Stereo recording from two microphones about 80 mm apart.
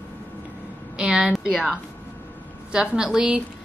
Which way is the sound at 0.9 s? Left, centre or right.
Centre.